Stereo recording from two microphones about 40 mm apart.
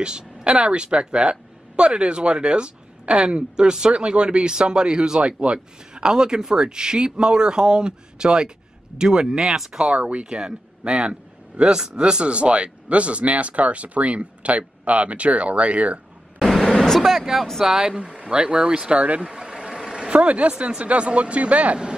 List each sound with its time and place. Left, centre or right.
0.0 s speech: right
9.4 s speech: centre
9.9 s a man's voice: right
10.2 s a man's voice: centre
16.3 s vehicle: centre
16.6 s vehicle: centre
17.0 s speech: centre
17.6 s speech: centre
18.9 s a man's voice: right
19.2 s vehicle: centre
20.1 s a man's voice: right